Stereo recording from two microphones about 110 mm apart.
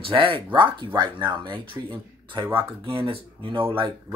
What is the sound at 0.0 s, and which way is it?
Speech, 55° right (ahead or behind).